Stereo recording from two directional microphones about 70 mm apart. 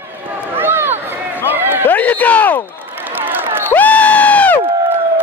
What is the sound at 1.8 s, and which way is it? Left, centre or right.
Speech, left.